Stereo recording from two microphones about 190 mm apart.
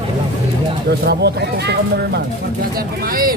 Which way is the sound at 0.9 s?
60° right (ahead or behind).